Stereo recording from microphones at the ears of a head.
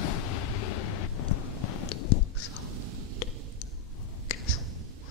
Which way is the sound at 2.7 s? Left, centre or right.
Right.